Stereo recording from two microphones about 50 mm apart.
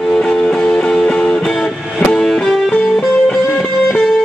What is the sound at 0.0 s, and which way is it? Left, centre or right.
Music, centre.